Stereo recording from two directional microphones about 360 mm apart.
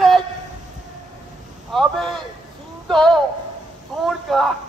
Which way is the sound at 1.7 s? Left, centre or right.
Centre.